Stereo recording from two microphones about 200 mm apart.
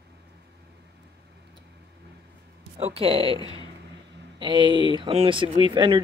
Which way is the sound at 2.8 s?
30° right (ahead or behind).